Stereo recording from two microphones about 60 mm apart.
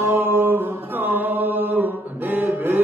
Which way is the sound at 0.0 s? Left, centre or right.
Right.